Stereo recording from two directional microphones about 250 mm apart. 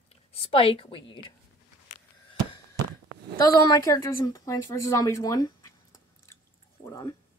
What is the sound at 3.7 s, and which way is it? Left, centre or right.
Speech, centre.